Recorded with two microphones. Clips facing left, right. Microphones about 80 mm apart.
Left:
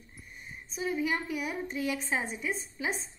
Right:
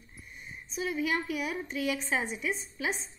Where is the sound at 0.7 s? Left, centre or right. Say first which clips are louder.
Even; left.